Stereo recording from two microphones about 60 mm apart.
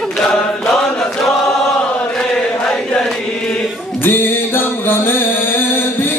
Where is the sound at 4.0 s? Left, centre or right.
Left.